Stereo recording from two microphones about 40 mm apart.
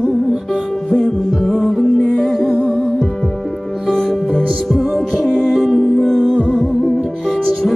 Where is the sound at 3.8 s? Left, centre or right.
Centre.